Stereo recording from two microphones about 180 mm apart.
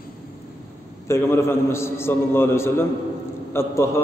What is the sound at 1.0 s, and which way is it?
A man's voice, 15° left (ahead or behind).